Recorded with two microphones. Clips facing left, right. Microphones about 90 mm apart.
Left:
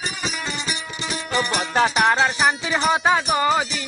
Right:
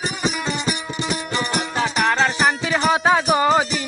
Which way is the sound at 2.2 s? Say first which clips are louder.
Right 1 dB; 5° left (ahead or behind).